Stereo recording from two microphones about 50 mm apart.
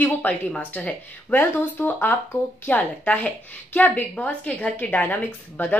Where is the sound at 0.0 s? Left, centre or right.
Left.